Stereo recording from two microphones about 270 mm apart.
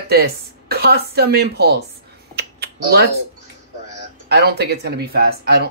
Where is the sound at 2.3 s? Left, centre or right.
Right.